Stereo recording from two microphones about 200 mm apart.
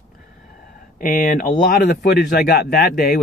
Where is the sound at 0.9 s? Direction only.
45° left (ahead or behind).